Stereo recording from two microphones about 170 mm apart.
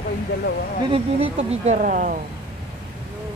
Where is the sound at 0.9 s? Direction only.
40° right (ahead or behind).